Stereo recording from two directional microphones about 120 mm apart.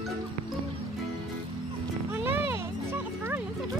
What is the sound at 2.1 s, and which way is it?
Music, 15° right (ahead or behind).